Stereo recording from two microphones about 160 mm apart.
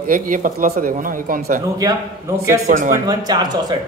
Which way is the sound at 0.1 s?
55° right (ahead or behind).